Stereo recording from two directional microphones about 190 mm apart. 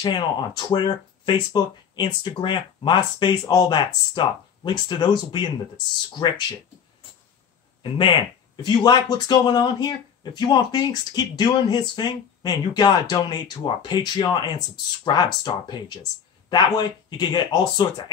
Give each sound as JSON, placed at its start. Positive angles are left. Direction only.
{"t": 0.0, "sound": "speech", "side_deg": 25}
{"t": 7.8, "sound": "speech", "side_deg": 25}